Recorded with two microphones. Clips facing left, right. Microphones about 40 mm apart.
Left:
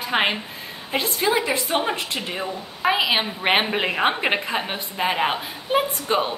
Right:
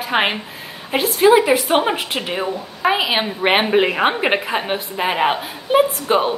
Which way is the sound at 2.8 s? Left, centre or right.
Centre.